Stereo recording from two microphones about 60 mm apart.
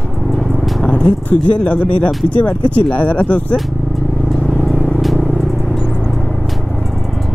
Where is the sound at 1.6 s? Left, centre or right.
Left.